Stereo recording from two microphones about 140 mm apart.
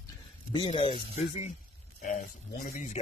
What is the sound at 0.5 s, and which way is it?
Speech, 40° left (ahead or behind).